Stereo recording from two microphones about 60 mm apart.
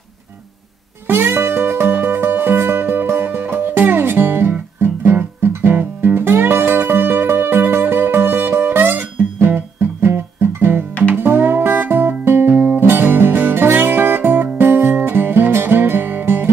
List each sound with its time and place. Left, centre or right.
1.0 s music: right